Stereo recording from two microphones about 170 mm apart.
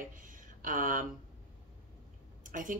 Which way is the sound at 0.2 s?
50° right (ahead or behind).